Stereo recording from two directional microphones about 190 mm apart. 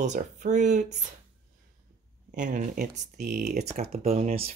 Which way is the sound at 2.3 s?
45° right (ahead or behind).